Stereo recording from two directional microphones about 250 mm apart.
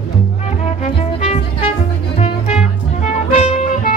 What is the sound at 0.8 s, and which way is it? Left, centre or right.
Music, left.